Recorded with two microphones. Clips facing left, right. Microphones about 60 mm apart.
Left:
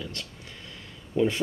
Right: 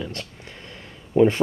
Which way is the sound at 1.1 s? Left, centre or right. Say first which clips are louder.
Right 8 dB; right.